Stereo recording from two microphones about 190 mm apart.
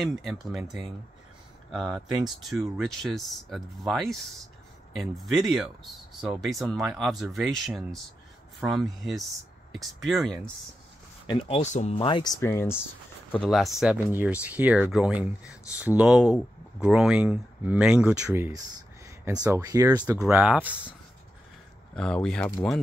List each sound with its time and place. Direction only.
0.0 s speech: centre (ahead or behind)
11.2 s speech: 30° left (ahead or behind); by 12.7 s 15° left (ahead or behind)
13.3 s speech: centre (ahead or behind); by 20.0 s 20° right (ahead or behind)
20.1 s speech: 10° right (ahead or behind)
21.9 s speech: 5° left (ahead or behind)